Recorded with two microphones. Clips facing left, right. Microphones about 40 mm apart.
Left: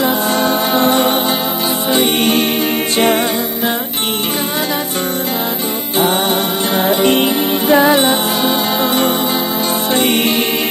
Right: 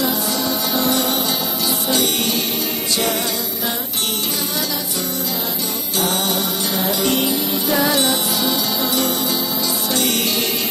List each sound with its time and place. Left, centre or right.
0.0 s music: left
6.7 s music: left